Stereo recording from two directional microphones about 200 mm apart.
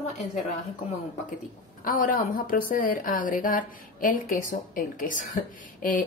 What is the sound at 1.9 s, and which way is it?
A woman's voice, 45° left (ahead or behind).